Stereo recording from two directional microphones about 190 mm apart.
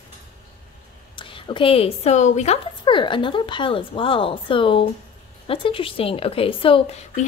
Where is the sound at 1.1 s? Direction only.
25° left (ahead or behind).